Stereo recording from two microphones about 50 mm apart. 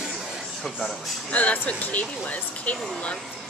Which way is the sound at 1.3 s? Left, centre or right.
Left.